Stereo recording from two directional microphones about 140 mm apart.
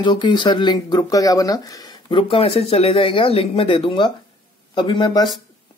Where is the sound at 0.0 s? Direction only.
35° left (ahead or behind).